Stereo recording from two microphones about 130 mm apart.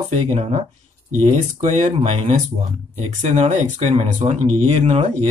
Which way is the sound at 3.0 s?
60° right (ahead or behind).